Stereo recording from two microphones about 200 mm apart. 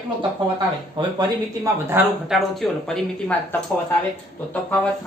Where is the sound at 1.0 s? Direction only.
25° right (ahead or behind).